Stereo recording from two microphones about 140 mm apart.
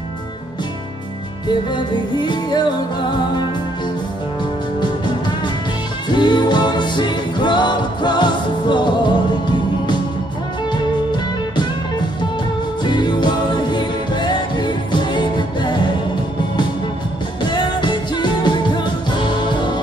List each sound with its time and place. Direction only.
1.5 s music: 35° left (ahead or behind)
4.7 s music: 30° left (ahead or behind)
12.8 s music: 35° left (ahead or behind)
17.4 s music: 35° left (ahead or behind)